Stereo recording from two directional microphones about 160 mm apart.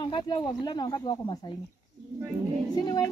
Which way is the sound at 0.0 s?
25° left (ahead or behind).